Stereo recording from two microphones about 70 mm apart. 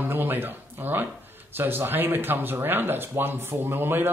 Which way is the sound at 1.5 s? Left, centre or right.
Right.